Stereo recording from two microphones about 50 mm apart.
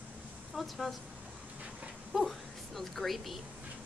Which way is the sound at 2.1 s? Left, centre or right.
Centre.